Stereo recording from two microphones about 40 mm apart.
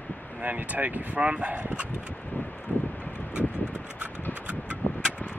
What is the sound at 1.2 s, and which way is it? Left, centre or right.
Speech, right.